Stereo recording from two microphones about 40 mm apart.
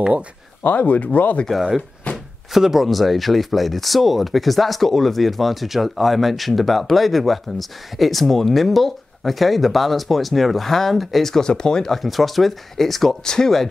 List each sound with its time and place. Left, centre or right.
0.7 s speech: left
2.1 s a sound: left
2.5 s speech: centre
11.9 s speech: centre